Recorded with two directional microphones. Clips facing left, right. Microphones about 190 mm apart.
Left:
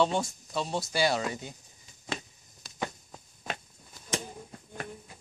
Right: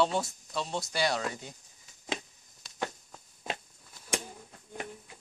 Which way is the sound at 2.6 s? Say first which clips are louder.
Left 4 dB; centre (ahead or behind).